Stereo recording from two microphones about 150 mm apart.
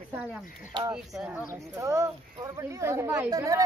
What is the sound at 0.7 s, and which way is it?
Speech, 30° right (ahead or behind).